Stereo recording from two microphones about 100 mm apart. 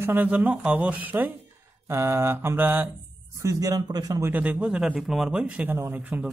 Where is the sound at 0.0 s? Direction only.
15° right (ahead or behind).